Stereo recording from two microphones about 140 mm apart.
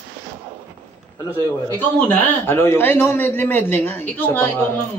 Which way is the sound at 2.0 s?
10° left (ahead or behind).